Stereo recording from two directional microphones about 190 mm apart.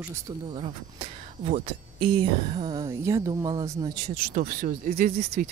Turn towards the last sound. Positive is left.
turn(degrees=-35)  # may be behind; listen again after turning